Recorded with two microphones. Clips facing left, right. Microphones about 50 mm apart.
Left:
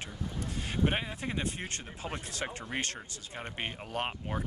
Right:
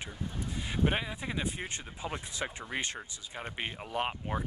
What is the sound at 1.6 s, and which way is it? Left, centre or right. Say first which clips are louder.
Speech: right 1 dB; centre.